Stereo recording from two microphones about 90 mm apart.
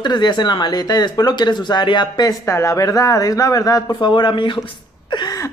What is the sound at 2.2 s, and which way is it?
A man's voice, 35° left (ahead or behind).